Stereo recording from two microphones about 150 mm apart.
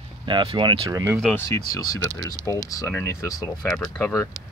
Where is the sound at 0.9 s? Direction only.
15° right (ahead or behind).